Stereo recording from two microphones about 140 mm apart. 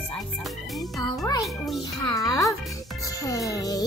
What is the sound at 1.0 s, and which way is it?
Speech, 30° left (ahead or behind).